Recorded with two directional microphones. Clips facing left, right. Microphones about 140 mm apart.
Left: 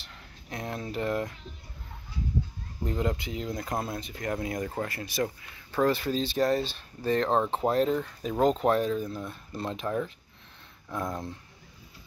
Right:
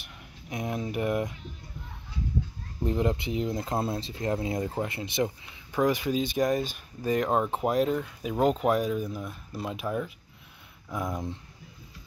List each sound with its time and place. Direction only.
0.0 s speech: 15° right (ahead or behind)
2.8 s speech: 20° right (ahead or behind)